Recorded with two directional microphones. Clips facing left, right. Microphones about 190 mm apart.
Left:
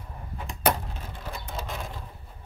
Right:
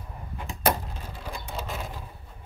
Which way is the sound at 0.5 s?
10° right (ahead or behind).